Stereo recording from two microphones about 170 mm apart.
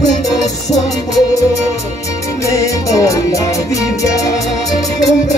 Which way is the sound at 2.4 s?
20° left (ahead or behind).